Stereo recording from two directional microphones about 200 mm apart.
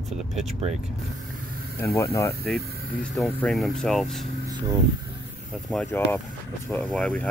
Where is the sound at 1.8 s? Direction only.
10° left (ahead or behind).